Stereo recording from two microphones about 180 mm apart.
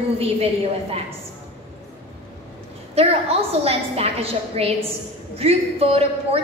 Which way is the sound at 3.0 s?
35° right (ahead or behind).